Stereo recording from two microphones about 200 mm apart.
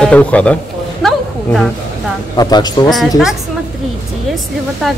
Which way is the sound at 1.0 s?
Centre (ahead or behind).